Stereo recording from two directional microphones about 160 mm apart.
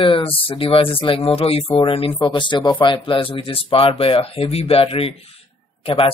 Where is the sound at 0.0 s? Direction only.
35° left (ahead or behind).